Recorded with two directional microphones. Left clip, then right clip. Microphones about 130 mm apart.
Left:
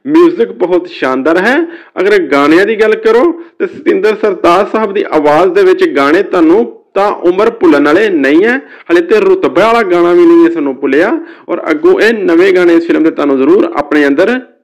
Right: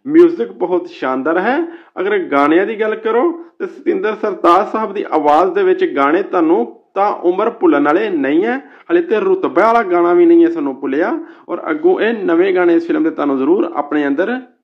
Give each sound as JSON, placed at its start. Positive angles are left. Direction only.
{"t": 0.4, "sound": "a man's voice", "side_deg": 15}